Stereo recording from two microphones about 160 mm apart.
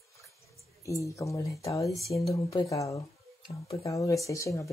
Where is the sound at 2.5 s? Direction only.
20° left (ahead or behind).